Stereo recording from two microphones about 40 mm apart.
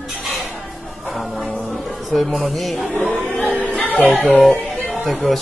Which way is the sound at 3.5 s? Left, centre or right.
Left.